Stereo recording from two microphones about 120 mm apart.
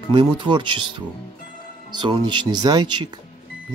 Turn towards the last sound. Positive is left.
turn(degrees=-40)  # may be behind; listen again after turning